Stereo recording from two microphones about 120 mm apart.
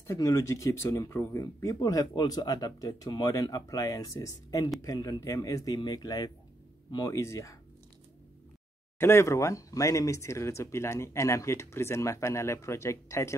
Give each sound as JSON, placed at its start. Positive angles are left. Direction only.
{"t": 0.0, "sound": "speech", "side_deg": 25}
{"t": 8.9, "sound": "speech", "side_deg": 20}